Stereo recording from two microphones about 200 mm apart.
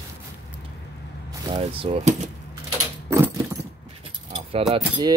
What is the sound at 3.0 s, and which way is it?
Keys jangling, 15° right (ahead or behind).